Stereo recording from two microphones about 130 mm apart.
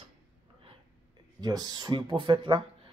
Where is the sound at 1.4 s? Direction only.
30° right (ahead or behind).